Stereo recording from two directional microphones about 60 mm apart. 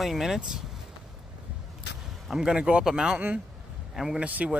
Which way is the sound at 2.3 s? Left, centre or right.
Centre.